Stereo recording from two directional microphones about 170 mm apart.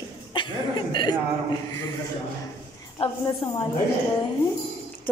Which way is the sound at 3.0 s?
35° left (ahead or behind).